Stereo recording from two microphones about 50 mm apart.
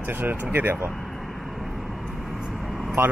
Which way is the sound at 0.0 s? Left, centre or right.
Right.